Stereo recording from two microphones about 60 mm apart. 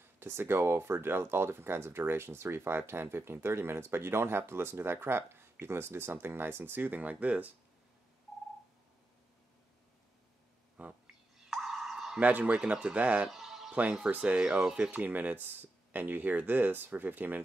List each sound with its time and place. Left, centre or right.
0.0 s speech: right
11.1 s bird: centre
12.2 s speech: right
13.3 s music: centre
14.1 s speech: centre
14.9 s speech: right